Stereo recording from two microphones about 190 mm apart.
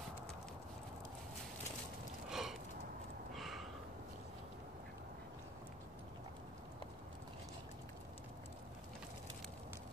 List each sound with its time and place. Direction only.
2.2 s gasp: centre (ahead or behind)
3.3 s snort: centre (ahead or behind)